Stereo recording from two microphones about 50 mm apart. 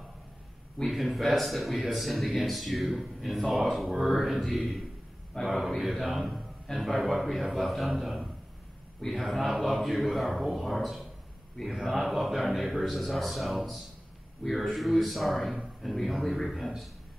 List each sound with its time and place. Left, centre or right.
0.8 s speech: centre